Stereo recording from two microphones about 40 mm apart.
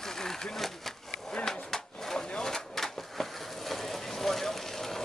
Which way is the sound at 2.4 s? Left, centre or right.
Centre.